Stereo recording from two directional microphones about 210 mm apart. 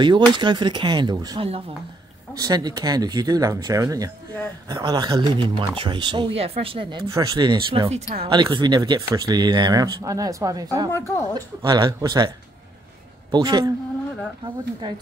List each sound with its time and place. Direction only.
0.0 s speech: 20° right (ahead or behind)
10.9 s a woman's voice: 10° left (ahead or behind)
11.3 s speech: 20° right (ahead or behind)
13.3 s speech: 20° right (ahead or behind)